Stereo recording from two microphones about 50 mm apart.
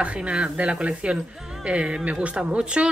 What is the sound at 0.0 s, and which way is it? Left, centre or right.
Speech, right.